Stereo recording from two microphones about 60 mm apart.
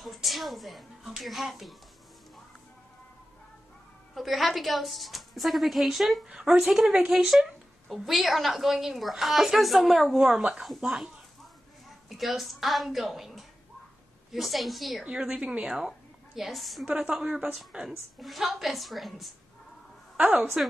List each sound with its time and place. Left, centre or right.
0.0 s a woman's voice: centre
4.1 s a woman's voice: centre
6.2 s a woman's voice: centre
12.1 s a woman's voice: centre
15.0 s a woman's voice: centre
16.3 s a woman's voice: centre
20.2 s a woman's voice: right